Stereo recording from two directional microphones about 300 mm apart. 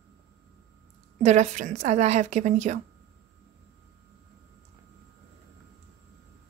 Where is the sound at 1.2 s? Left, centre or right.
Right.